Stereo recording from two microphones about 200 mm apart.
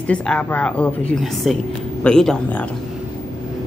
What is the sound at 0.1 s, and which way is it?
Speech, 5° left (ahead or behind).